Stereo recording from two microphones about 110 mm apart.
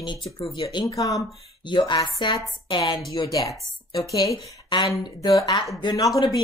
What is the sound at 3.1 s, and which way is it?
A woman's voice, 35° left (ahead or behind).